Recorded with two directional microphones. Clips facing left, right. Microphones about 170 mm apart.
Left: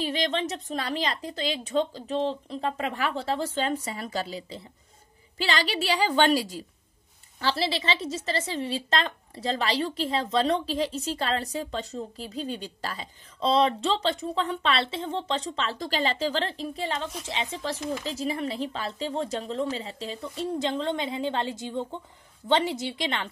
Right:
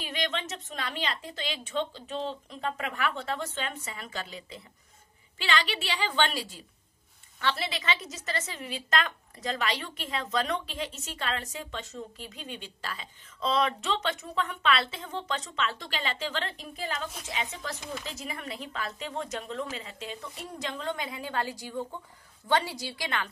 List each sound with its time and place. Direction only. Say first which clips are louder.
0.0 s a woman's voice: left 6 dB; 35° left (ahead or behind)